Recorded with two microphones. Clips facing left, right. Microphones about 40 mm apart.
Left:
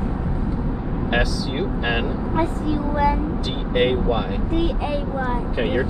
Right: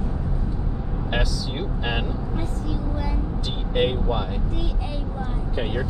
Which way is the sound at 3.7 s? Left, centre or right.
Centre.